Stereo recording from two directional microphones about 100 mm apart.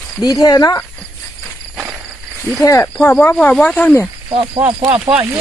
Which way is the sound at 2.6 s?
30° left (ahead or behind).